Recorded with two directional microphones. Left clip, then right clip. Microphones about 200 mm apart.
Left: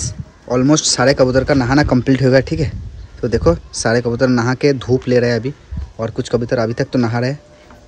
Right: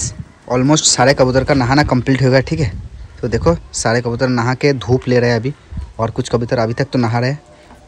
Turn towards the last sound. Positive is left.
turn(degrees=10)  # may be behind; listen again after turning